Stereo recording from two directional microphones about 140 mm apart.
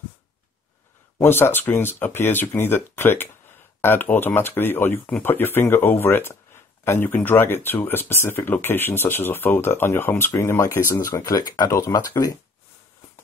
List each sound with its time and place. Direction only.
1.1 s speech: 20° left (ahead or behind)